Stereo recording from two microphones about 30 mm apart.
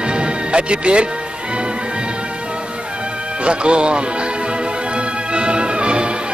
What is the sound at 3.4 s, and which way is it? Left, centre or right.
Speech, right.